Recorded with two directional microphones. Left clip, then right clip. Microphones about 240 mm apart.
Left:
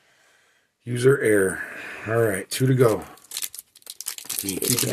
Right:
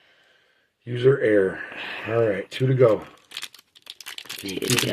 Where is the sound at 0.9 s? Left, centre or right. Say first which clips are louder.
Even; left.